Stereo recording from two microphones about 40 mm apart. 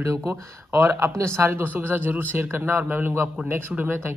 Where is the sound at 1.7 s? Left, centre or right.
Right.